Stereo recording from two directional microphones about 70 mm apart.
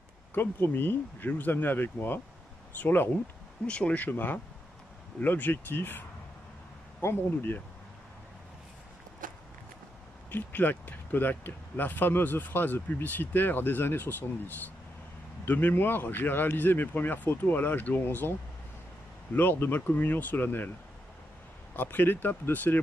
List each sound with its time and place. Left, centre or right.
0.3 s speech: left
3.6 s speech: centre
10.3 s speech: left
15.4 s speech: left
19.3 s speech: left
21.7 s speech: left